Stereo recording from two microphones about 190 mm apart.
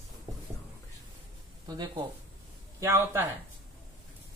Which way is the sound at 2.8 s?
15° right (ahead or behind).